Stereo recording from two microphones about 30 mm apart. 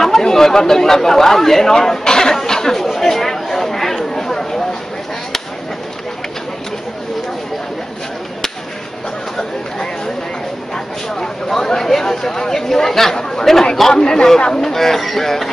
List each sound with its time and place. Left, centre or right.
0.0 s chatter: centre
11.1 s a sound: centre
12.0 s speech: centre
13.1 s chatter: left
13.9 s a man's voice: left